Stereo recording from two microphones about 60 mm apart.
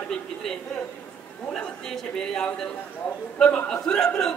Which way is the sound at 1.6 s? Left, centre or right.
Centre.